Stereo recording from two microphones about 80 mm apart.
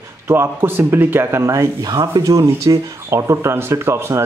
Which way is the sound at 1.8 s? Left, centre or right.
Right.